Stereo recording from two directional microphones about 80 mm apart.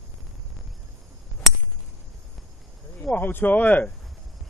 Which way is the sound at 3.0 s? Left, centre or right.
Left.